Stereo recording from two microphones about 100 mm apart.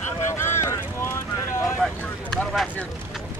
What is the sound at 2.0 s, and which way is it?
Vehicle, 15° left (ahead or behind).